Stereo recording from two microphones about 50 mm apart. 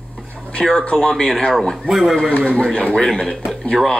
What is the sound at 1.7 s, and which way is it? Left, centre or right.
Speech, centre.